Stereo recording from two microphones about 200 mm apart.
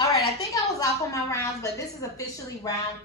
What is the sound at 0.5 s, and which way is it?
A woman's voice, 15° left (ahead or behind).